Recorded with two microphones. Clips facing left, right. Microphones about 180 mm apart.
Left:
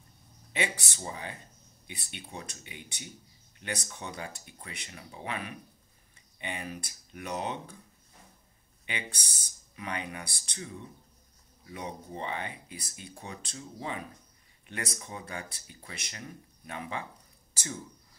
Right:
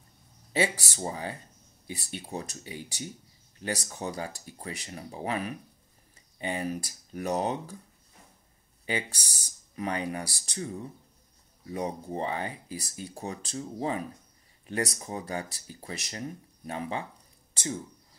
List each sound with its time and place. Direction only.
0.5 s speech: 35° right (ahead or behind)
8.8 s speech: 35° right (ahead or behind)